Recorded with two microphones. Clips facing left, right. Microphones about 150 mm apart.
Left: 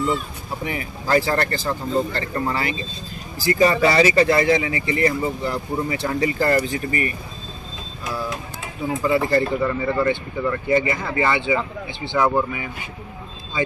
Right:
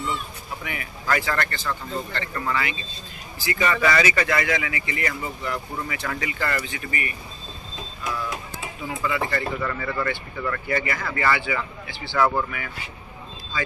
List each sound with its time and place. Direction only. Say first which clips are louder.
0.7 s speech: left 4 dB; 30° left (ahead or behind)
9.0 s speech: left 7 dB; 35° left (ahead or behind)
9.6 s speech: left 6 dB; 20° left (ahead or behind)